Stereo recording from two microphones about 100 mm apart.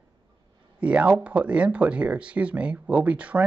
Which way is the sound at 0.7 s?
10° right (ahead or behind).